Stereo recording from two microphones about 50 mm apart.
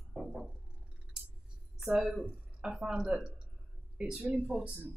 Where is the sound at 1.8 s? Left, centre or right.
Centre.